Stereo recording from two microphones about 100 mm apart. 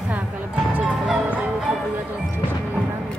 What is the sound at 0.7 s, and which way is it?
Music, 15° right (ahead or behind).